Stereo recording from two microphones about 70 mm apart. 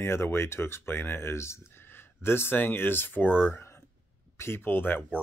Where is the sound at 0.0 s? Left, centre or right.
Left.